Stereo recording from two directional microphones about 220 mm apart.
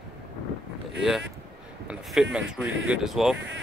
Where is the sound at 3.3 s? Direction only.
55° right (ahead or behind).